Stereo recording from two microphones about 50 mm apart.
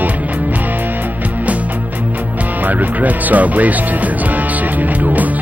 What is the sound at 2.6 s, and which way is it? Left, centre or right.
Music, right.